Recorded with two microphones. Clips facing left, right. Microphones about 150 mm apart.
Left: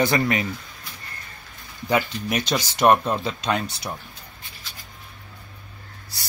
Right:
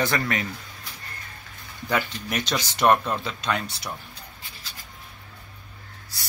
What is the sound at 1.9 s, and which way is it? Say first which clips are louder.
Speech: left 4 dB; 15° left (ahead or behind).